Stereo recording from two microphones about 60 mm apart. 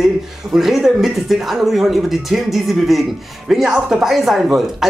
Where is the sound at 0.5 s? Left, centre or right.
Centre.